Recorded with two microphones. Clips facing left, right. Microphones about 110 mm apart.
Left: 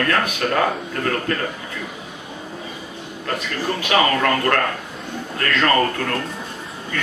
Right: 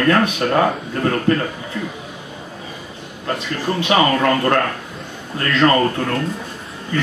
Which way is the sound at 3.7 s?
20° right (ahead or behind).